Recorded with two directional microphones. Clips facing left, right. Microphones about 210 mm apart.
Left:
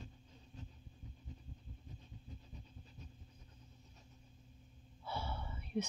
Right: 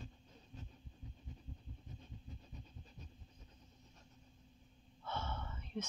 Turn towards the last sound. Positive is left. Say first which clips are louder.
# left 4 dB
turn(degrees=10)  # may be behind; listen again after turning